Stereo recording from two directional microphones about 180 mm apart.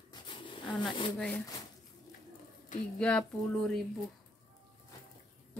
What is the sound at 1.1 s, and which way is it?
Speech, 5° left (ahead or behind).